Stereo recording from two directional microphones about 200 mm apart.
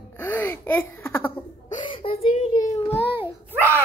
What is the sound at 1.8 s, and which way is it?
Whimper, 25° left (ahead or behind).